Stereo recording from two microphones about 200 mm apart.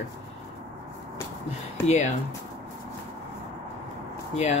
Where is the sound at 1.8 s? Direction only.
35° left (ahead or behind).